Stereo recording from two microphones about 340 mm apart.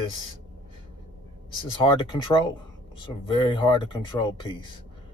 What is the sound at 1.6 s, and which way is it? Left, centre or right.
Speech, centre.